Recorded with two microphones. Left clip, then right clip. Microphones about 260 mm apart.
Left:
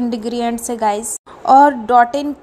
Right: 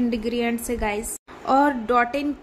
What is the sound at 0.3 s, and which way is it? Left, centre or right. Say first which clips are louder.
A woman's voice: left 5 dB; centre.